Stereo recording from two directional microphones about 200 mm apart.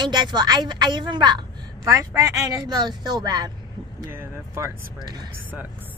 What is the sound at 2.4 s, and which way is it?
A woman's voice, 15° right (ahead or behind).